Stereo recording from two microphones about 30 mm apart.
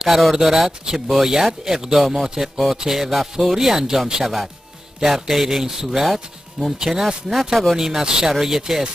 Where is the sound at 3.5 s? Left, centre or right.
Centre.